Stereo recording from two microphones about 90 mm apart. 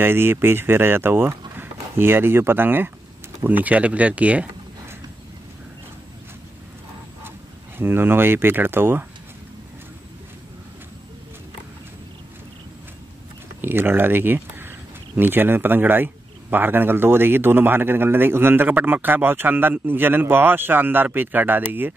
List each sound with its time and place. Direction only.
0.0 s a man's voice: 25° right (ahead or behind)
7.2 s speech: 25° right (ahead or behind)
13.6 s a man's voice: 25° right (ahead or behind)